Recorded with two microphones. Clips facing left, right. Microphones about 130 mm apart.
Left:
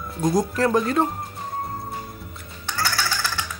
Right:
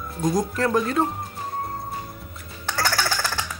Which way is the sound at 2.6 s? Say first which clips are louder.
Right 2 dB; 45° right (ahead or behind).